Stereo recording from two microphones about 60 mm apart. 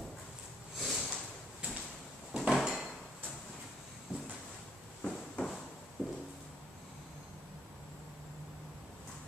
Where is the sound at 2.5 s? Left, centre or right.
Centre.